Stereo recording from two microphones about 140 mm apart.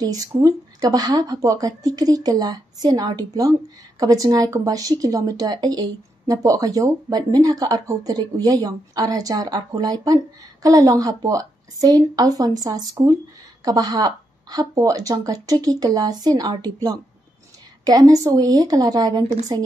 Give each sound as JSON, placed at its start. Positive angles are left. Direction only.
{"t": 0.0, "sound": "speech", "side_deg": -25}